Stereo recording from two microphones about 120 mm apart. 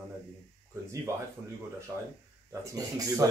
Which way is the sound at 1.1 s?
25° right (ahead or behind).